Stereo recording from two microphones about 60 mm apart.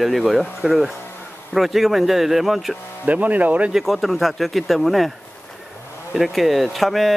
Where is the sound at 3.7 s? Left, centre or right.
Centre.